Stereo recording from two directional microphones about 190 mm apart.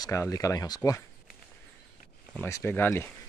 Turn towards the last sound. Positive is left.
turn(degrees=10)  # may be behind; listen again after turning